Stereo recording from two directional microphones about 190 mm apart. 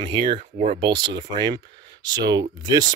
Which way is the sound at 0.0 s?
25° right (ahead or behind).